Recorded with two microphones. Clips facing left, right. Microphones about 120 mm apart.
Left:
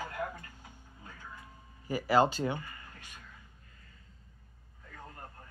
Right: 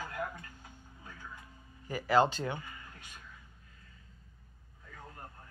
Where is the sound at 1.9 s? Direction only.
10° left (ahead or behind).